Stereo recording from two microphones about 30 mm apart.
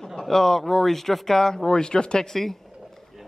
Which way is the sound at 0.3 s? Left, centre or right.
Centre.